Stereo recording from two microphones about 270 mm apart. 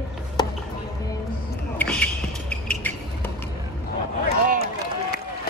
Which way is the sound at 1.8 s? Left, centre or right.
Centre.